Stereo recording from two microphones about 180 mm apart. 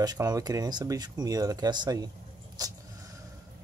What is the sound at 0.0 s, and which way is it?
Speech, 20° right (ahead or behind).